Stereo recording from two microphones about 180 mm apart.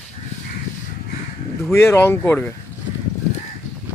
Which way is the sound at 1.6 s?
15° left (ahead or behind).